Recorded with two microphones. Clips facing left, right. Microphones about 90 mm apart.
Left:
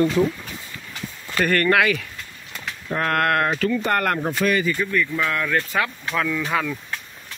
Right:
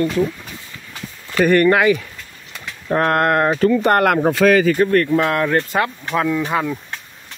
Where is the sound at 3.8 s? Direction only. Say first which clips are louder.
Right 7 dB; 75° right (ahead or behind).